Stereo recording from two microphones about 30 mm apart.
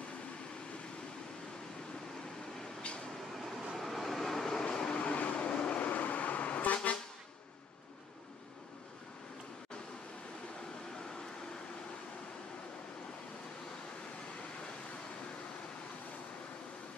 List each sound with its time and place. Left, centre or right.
3.7 s train: centre
4.6 s vehicle: left
5.0 s vehicle: left
5.5 s vehicle: left
5.8 s vehicle: left